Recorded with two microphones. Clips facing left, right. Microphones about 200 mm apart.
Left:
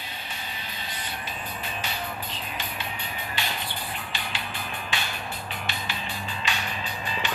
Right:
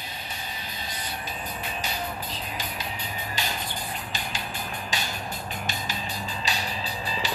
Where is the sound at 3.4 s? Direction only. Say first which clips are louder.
Even; 40° right (ahead or behind).